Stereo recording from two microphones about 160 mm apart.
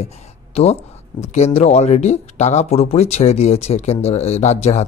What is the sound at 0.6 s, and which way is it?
A man's voice, 40° left (ahead or behind).